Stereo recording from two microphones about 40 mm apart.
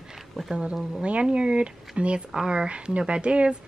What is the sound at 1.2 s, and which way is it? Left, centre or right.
Speech, right.